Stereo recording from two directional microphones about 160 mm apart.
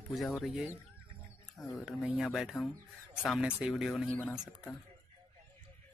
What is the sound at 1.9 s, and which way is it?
Speech, 5° right (ahead or behind).